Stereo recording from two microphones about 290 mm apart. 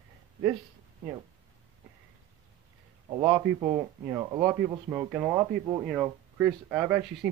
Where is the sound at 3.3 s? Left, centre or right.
Centre.